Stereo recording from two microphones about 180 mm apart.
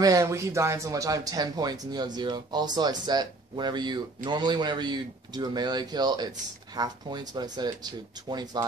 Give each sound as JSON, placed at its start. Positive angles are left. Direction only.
{"t": 0.0, "sound": "speech", "side_deg": -15}